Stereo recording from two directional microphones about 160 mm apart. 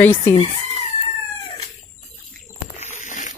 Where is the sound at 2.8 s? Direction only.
50° left (ahead or behind).